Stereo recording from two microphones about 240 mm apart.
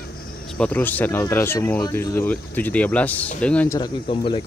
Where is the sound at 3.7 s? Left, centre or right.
Centre.